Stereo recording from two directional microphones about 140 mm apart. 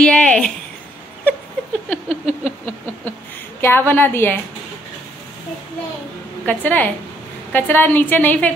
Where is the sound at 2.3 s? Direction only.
50° right (ahead or behind).